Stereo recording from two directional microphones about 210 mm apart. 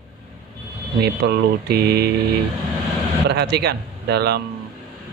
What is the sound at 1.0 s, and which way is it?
Speech, 50° right (ahead or behind).